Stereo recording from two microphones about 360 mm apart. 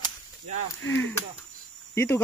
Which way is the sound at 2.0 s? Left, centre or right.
Centre.